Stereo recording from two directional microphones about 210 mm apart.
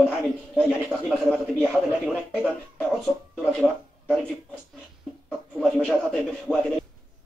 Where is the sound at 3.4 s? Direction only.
Centre (ahead or behind).